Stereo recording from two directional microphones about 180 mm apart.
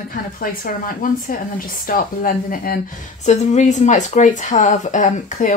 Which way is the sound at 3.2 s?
40° left (ahead or behind).